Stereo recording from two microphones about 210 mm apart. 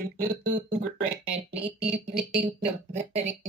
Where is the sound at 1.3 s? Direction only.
30° right (ahead or behind).